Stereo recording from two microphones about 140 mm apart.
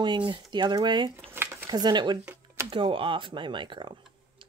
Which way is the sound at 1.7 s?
30° right (ahead or behind).